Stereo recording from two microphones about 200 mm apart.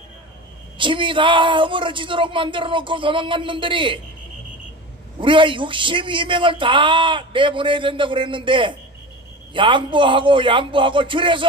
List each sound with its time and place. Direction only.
0.7 s a man's voice: 25° right (ahead or behind)
5.2 s a man's voice: 25° right (ahead or behind)